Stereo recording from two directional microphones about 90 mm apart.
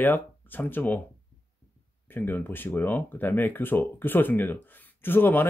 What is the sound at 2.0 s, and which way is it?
Speech, 20° left (ahead or behind).